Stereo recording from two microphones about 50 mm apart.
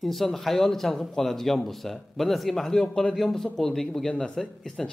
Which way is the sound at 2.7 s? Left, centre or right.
Centre.